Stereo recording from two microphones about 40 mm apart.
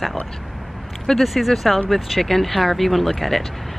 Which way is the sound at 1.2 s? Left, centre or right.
Centre.